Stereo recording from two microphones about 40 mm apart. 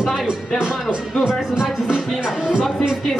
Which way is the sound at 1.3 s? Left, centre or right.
Centre.